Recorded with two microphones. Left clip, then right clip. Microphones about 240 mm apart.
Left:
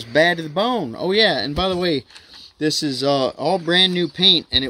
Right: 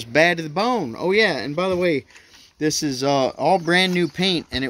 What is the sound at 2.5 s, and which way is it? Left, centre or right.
Speech, centre.